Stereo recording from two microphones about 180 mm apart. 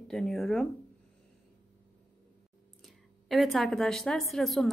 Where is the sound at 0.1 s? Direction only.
Centre (ahead or behind).